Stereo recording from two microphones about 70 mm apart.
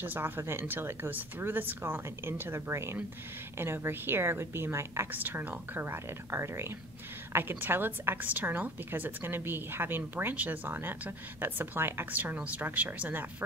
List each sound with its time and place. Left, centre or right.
0.0 s a woman's voice: right